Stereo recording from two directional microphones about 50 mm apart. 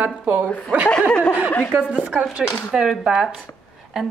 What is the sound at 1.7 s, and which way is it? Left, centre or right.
A woman's voice, right.